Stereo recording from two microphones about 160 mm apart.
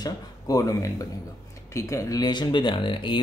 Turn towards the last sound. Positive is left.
turn(degrees=30)  # may be behind; listen again after turning